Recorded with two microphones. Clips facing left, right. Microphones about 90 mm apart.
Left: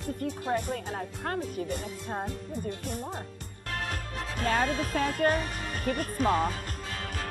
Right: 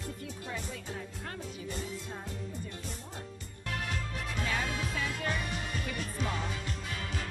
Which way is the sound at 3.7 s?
45° left (ahead or behind).